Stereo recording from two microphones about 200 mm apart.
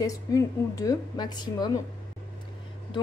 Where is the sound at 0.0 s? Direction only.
15° left (ahead or behind).